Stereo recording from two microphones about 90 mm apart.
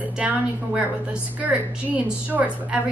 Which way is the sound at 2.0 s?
15° right (ahead or behind).